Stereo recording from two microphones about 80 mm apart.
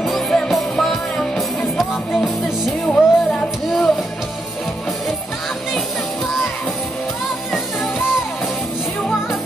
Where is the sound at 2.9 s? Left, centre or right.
Centre.